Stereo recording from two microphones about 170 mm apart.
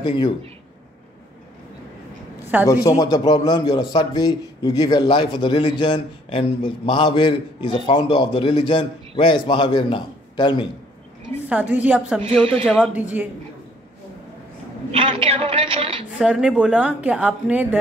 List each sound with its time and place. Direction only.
0.0 s speech: 30° left (ahead or behind)
2.6 s a man's voice: 20° left (ahead or behind)
11.4 s speech: 10° right (ahead or behind)
12.2 s a man's voice: 30° right (ahead or behind)
12.6 s speech: centre (ahead or behind)
14.9 s a man's voice: 30° right (ahead or behind)
16.2 s speech: 5° right (ahead or behind)